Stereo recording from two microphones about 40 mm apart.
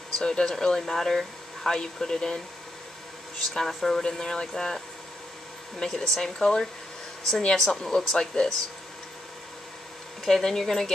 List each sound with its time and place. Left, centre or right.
0.2 s speech: centre
10.2 s speech: centre